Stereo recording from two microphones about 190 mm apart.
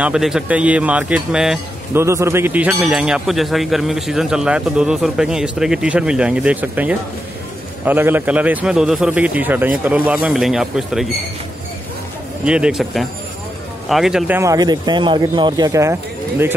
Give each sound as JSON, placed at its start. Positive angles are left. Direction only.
{"t": 0.0, "sound": "a man's voice", "side_deg": -5}
{"t": 2.0, "sound": "a man's voice", "side_deg": -15}
{"t": 12.4, "sound": "a man's voice", "side_deg": -5}